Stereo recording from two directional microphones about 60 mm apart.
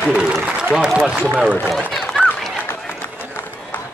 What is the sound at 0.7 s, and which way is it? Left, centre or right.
Speech, centre.